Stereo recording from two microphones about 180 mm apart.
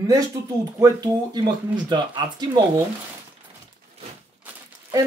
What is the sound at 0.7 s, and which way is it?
Speech, 20° right (ahead or behind).